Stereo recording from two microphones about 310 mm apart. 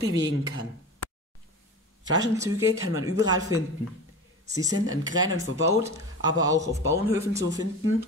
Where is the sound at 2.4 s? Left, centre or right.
Centre.